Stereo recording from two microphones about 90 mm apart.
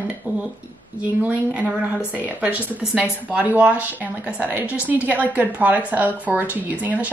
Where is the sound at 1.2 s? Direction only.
15° right (ahead or behind).